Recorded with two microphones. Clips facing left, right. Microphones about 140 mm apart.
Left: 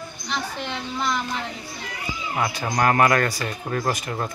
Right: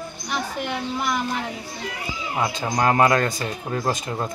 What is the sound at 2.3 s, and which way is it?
A man's voice, 20° right (ahead or behind).